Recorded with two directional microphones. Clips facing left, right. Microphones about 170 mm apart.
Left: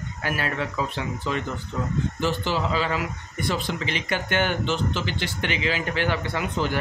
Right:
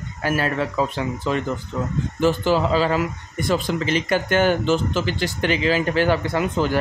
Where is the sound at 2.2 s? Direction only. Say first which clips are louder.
Right 9 dB; 45° right (ahead or behind).